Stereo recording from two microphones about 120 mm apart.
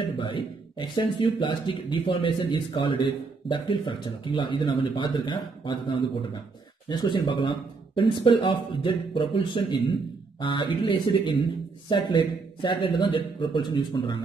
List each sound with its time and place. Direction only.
0.0 s a man's voice: 45° left (ahead or behind)